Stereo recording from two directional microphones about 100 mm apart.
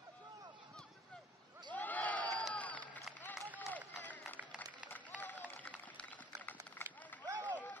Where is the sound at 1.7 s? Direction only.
15° left (ahead or behind).